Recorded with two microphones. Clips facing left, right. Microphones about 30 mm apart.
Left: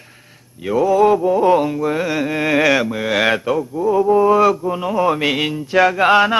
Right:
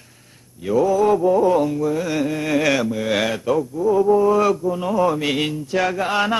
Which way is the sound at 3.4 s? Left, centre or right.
Left.